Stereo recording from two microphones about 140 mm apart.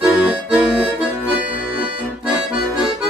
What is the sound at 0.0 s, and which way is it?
Music, 10° right (ahead or behind).